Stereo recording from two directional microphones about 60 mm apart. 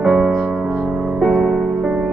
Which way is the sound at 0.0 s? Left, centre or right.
Centre.